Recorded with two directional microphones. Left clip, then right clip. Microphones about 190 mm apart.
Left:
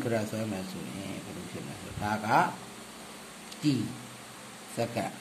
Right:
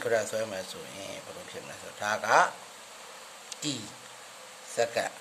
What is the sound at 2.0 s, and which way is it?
Speech, 35° right (ahead or behind).